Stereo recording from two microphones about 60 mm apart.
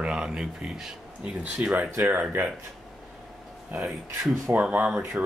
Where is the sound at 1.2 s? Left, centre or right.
Right.